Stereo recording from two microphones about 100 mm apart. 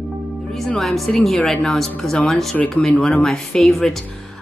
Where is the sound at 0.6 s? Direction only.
5° left (ahead or behind).